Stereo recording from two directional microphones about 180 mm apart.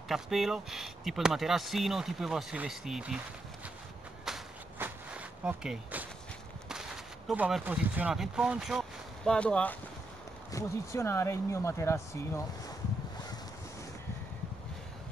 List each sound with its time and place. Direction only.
0.1 s speech: centre (ahead or behind)
4.3 s walk: 10° right (ahead or behind)
6.7 s speech: 5° right (ahead or behind); by 12.7 s 15° left (ahead or behind)